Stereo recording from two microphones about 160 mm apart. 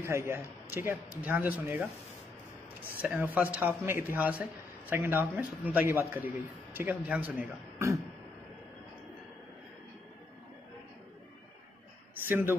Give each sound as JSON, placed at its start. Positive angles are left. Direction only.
{"t": 0.0, "sound": "a man's voice", "side_deg": -15}
{"t": 3.0, "sound": "a man's voice", "side_deg": -10}
{"t": 12.3, "sound": "a man's voice", "side_deg": -10}